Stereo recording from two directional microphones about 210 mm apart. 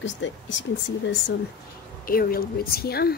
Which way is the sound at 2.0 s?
45° left (ahead or behind).